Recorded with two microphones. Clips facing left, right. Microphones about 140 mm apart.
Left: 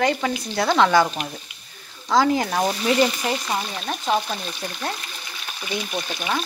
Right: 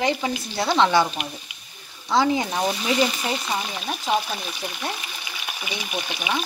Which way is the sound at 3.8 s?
5° right (ahead or behind).